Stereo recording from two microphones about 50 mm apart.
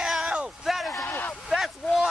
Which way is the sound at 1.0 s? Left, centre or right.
Left.